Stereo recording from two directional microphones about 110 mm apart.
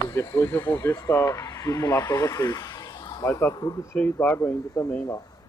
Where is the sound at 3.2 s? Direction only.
25° left (ahead or behind).